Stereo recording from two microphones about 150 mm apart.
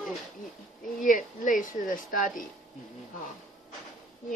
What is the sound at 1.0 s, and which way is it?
A woman's voice, 60° left (ahead or behind).